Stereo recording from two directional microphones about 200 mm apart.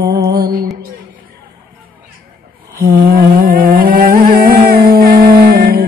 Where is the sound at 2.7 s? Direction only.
45° right (ahead or behind).